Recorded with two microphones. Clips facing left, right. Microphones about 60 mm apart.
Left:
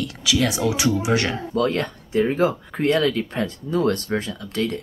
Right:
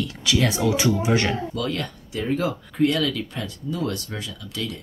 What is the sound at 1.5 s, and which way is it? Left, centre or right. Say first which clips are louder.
Speech: left 6 dB; left.